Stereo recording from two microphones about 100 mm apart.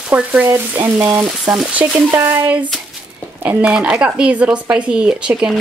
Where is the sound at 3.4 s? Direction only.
15° right (ahead or behind).